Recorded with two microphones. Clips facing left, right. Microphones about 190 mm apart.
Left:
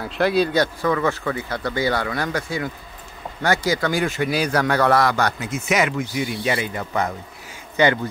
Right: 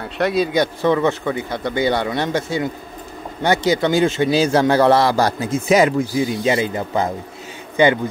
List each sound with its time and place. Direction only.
0.0 s speech: centre (ahead or behind)
0.8 s a man's voice: 20° right (ahead or behind)